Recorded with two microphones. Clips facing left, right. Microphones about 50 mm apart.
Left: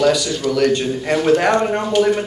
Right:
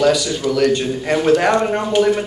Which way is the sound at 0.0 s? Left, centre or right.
Centre.